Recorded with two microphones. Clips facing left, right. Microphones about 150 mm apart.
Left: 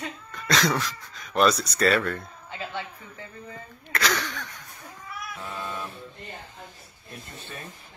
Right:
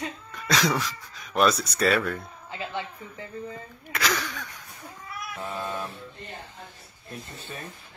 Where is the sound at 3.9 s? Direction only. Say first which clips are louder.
Left 1 dB; centre (ahead or behind).